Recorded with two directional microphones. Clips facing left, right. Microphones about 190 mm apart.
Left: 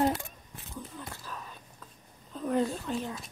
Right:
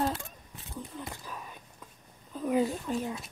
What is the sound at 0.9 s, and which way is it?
Whispering, 15° right (ahead or behind).